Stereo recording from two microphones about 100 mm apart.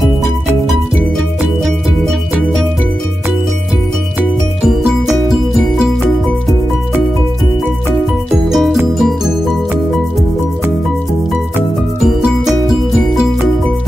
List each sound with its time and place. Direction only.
8.5 s music: 5° right (ahead or behind)
12.0 s music: 5° right (ahead or behind)